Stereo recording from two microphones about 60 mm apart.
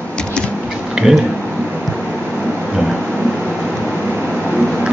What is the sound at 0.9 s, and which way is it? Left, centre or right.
Speech, centre.